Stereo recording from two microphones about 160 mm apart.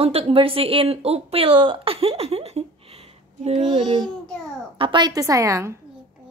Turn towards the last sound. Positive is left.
turn(degrees=-20)  # may be behind; listen again after turning